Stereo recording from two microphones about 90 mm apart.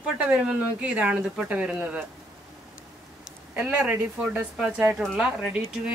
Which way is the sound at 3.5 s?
15° right (ahead or behind).